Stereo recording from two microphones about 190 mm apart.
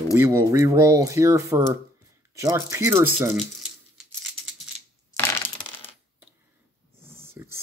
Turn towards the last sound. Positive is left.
turn(degrees=-15)  # may be behind; listen again after turning